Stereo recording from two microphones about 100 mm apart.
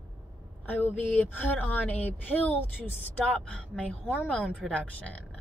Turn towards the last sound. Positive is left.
turn(degrees=15)  # may be behind; listen again after turning